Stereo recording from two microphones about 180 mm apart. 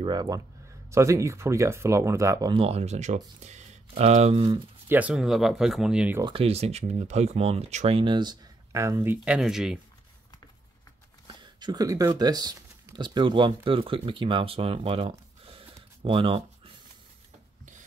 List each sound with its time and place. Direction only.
0.0 s speech: 20° right (ahead or behind)
2.5 s speech: 35° right (ahead or behind)
4.8 s speech: 10° right (ahead or behind)
6.2 s speech: 30° right (ahead or behind); by 9.8 s 5° right (ahead or behind)
11.4 s speech: 25° right (ahead or behind)